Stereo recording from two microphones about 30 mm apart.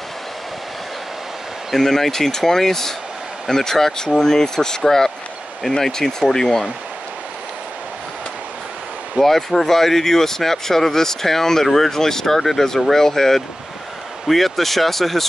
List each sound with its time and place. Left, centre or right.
1.8 s speech: centre
9.2 s speech: centre